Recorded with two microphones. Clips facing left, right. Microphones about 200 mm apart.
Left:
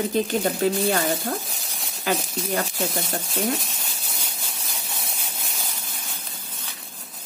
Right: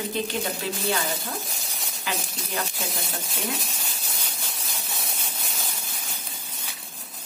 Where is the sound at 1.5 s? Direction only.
Centre (ahead or behind).